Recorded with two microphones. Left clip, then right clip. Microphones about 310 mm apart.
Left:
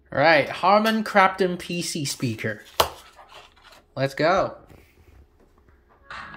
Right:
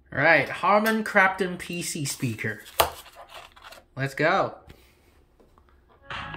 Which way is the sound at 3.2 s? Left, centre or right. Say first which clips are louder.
Right 3 dB; centre.